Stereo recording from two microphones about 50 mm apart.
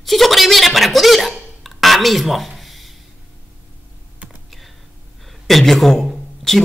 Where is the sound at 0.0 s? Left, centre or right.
Centre.